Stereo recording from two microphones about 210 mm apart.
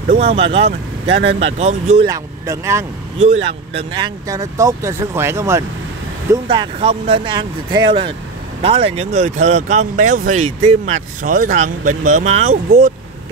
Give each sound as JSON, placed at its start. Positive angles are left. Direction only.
{"t": 0.1, "sound": "speech", "side_deg": -30}
{"t": 2.0, "sound": "speech", "side_deg": -15}
{"t": 3.4, "sound": "speech", "side_deg": -25}